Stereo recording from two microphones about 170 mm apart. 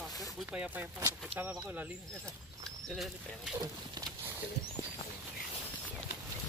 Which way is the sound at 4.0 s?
20° right (ahead or behind).